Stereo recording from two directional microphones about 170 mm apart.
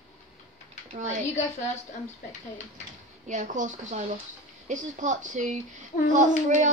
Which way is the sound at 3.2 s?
45° right (ahead or behind).